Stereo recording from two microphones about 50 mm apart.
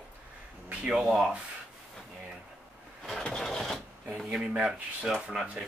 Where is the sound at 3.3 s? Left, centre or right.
Centre.